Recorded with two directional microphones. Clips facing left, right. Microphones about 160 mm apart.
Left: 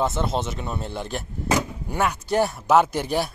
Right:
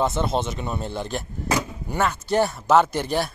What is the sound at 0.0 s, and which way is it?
Speech, 5° left (ahead or behind).